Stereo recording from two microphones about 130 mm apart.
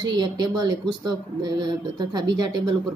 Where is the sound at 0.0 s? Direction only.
35° right (ahead or behind).